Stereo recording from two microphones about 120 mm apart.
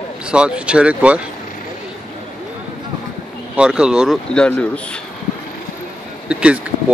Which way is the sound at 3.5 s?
10° right (ahead or behind).